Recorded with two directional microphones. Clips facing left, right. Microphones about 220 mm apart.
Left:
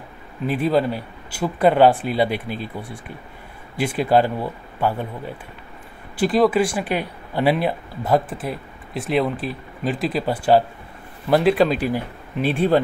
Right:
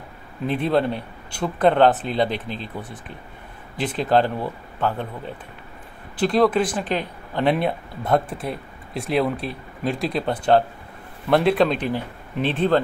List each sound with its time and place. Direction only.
0.5 s speech: 5° left (ahead or behind)
6.1 s speech: 5° left (ahead or behind)